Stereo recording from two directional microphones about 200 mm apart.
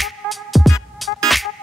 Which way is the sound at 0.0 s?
Centre (ahead or behind).